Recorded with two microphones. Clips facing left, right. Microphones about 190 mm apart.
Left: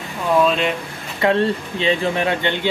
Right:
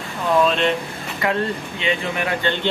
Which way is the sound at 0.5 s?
5° left (ahead or behind).